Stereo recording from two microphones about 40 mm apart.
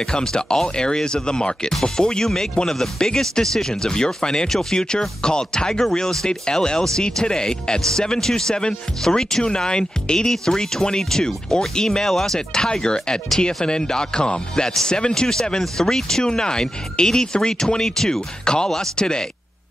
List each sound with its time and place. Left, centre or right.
0.0 s speech: centre